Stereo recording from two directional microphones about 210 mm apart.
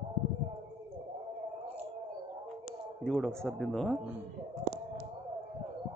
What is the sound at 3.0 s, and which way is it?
Speech, centre (ahead or behind).